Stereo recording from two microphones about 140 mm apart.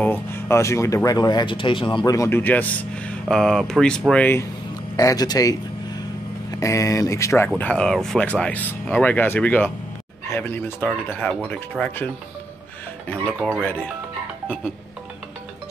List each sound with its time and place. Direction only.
0.0 s speech: 15° left (ahead or behind); by 2.1 s 35° left (ahead or behind)
2.1 s speech: 15° left (ahead or behind)
4.9 s speech: 25° left (ahead or behind)
7.4 s speech: 10° left (ahead or behind)